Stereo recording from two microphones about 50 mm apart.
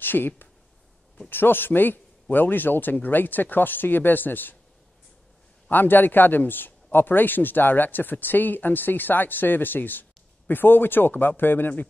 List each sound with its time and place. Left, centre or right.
0.0 s a sound: left
1.3 s speech: left
5.7 s a man's voice: left